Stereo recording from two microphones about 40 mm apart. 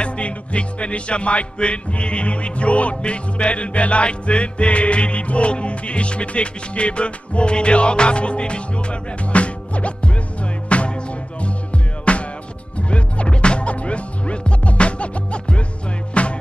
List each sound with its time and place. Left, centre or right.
0.0 s music: left
12.0 s music: left